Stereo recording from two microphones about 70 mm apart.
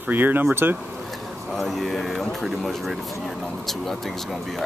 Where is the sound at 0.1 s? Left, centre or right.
Right.